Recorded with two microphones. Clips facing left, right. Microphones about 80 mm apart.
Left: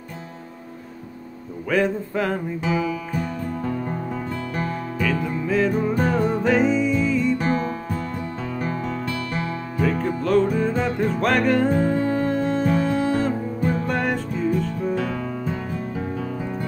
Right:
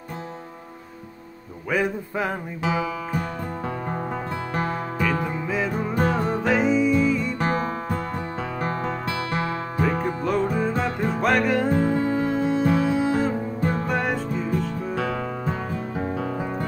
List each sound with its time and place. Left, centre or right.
1.7 s music: centre
3.2 s music: right
5.3 s music: centre
7.3 s music: right
10.0 s music: centre
15.0 s music: right